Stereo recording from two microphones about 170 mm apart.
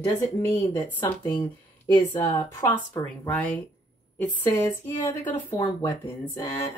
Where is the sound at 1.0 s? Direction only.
10° left (ahead or behind).